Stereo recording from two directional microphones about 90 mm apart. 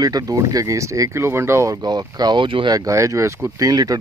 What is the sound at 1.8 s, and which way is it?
Speech, 50° right (ahead or behind).